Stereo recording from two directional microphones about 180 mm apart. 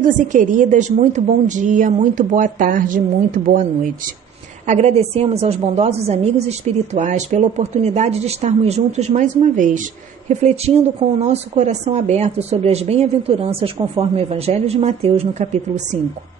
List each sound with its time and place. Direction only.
0.0 s a woman's voice: 45° right (ahead or behind)
4.6 s a woman's voice: 35° right (ahead or behind)